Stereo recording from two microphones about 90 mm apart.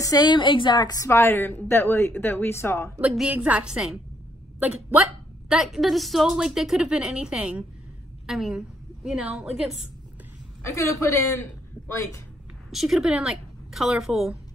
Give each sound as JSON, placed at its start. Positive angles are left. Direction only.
{"t": 0.0, "sound": "a woman's voice", "side_deg": 45}
{"t": 1.0, "sound": "a woman's voice", "side_deg": 30}
{"t": 3.0, "sound": "a woman's voice", "side_deg": -10}
{"t": 5.5, "sound": "a woman's voice", "side_deg": -5}
{"t": 10.6, "sound": "a woman's voice", "side_deg": 35}
{"t": 12.7, "sound": "a woman's voice", "side_deg": -5}